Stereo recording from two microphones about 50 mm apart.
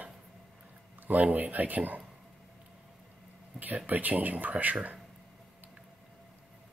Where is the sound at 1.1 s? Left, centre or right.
Right.